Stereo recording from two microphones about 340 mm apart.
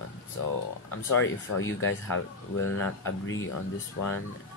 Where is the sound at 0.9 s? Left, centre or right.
Left.